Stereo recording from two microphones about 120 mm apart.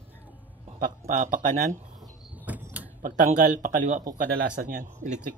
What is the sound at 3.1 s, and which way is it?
Speech, 90° right.